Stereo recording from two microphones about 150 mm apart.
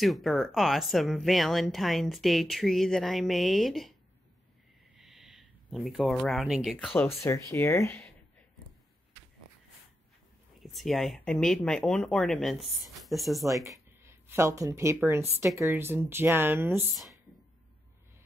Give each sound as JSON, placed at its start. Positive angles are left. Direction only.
{"t": 0.0, "sound": "speech", "side_deg": 0}
{"t": 4.9, "sound": "a sound", "side_deg": 0}
{"t": 7.0, "sound": "speech", "side_deg": 20}
{"t": 10.6, "sound": "speech", "side_deg": 0}
{"t": 13.5, "sound": "speech", "side_deg": -20}